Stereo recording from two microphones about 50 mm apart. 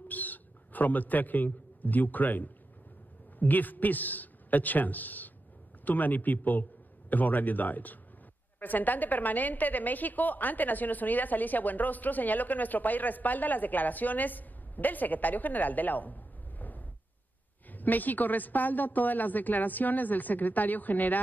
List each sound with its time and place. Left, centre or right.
0.1 s a man's voice: left